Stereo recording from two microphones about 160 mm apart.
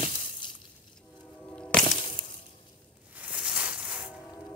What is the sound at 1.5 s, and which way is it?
Music, 10° left (ahead or behind).